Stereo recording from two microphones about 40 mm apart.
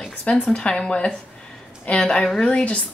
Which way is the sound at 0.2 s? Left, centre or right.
Left.